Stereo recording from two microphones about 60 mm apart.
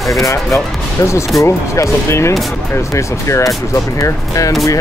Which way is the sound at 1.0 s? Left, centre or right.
Left.